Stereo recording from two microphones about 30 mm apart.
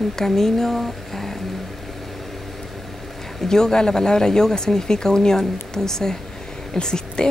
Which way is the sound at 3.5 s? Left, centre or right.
Left.